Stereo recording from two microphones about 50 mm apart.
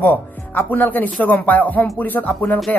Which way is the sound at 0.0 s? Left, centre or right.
Left.